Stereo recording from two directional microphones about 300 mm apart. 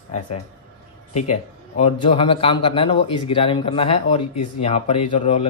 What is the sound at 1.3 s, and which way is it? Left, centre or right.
A man's voice, left.